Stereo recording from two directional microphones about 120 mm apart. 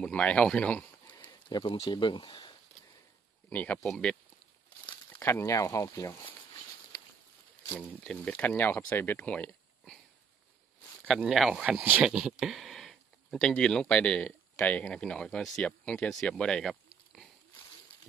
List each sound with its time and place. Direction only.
0.0 s speech: 10° left (ahead or behind)
1.2 s speech: 40° left (ahead or behind)
3.4 s speech: 15° left (ahead or behind)
5.2 s speech: 25° left (ahead or behind)
8.3 s speech: 15° left (ahead or behind)
11.2 s speech: centre (ahead or behind)